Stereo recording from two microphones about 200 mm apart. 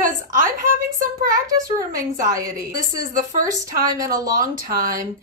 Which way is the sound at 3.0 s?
45° right (ahead or behind).